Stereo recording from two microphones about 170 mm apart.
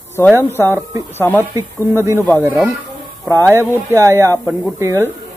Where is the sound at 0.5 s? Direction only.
15° right (ahead or behind).